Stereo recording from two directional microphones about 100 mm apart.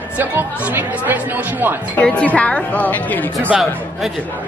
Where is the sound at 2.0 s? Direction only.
15° left (ahead or behind).